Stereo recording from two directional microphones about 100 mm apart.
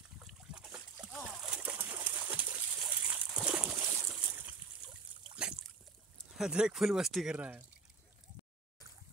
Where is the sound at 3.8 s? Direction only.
25° right (ahead or behind).